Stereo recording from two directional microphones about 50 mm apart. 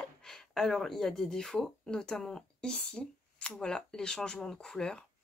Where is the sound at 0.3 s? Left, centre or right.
Centre.